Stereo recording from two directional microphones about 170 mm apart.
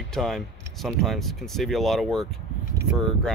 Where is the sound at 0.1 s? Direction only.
Centre (ahead or behind).